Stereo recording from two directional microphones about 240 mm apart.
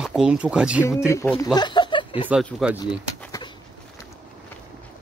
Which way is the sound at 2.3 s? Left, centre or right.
Centre.